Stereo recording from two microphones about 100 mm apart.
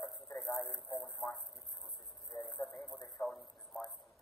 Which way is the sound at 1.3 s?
Centre (ahead or behind).